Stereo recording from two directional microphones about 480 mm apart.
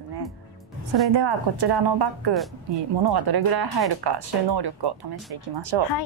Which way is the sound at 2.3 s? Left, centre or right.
Centre.